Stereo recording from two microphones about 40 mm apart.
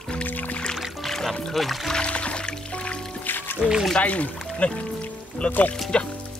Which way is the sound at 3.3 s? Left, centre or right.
Left.